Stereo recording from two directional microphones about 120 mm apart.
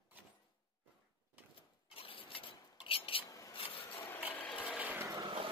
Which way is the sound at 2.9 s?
50° left (ahead or behind).